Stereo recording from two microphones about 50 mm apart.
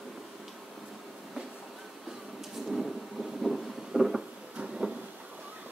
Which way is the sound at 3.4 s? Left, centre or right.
Centre.